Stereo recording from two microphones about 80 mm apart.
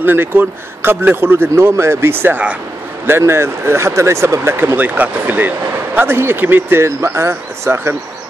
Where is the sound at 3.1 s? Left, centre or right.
Right.